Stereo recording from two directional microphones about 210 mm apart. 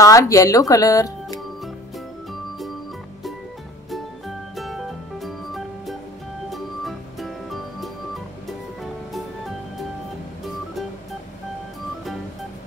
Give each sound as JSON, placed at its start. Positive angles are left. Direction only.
{"t": 0.0, "sound": "speech", "side_deg": 15}
{"t": 4.6, "sound": "music", "side_deg": 0}
{"t": 10.4, "sound": "music", "side_deg": 0}